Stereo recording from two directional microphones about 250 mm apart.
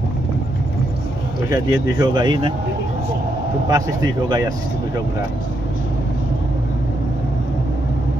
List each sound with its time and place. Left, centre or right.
1.5 s speech: centre
3.6 s speech: centre